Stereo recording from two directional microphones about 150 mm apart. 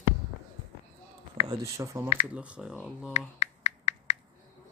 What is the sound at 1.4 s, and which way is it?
Speech, 20° right (ahead or behind).